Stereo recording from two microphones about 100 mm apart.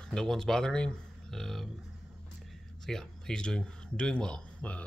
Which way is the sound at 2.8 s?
5° left (ahead or behind).